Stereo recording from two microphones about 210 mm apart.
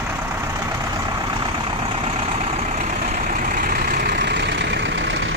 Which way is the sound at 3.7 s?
45° right (ahead or behind).